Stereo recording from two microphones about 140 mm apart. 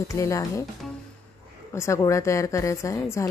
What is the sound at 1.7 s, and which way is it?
Speech, 20° left (ahead or behind).